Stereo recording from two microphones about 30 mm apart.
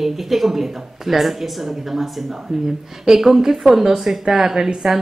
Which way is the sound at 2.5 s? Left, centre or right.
Right.